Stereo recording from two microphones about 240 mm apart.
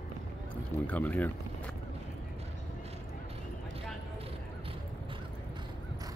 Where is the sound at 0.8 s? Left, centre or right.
Centre.